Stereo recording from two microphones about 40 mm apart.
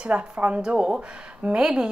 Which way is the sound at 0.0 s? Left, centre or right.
Right.